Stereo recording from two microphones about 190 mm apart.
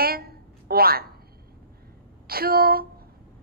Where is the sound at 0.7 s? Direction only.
55° right (ahead or behind).